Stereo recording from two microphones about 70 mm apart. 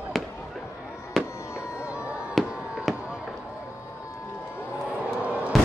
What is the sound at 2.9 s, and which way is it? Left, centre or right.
Fireworks, centre.